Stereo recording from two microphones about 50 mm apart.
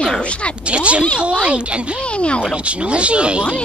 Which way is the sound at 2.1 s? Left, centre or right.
Left.